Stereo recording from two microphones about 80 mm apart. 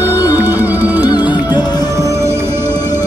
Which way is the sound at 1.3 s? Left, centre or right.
Left.